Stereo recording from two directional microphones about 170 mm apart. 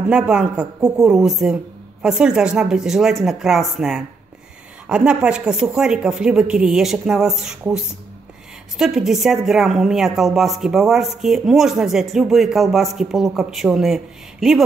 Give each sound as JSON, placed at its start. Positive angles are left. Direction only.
{"t": 0.1, "sound": "a woman's voice", "side_deg": -5}
{"t": 8.7, "sound": "a woman's voice", "side_deg": 0}